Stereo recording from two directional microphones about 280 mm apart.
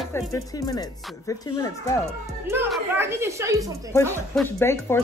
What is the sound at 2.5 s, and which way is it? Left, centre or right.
A woman's voice, centre.